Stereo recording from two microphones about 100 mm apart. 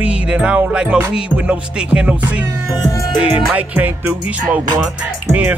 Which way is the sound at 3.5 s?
15° right (ahead or behind).